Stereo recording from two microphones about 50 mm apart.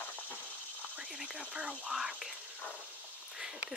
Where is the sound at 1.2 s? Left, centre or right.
Right.